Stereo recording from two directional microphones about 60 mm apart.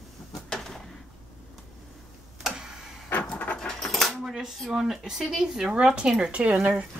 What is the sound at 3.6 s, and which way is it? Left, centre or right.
Coin, centre.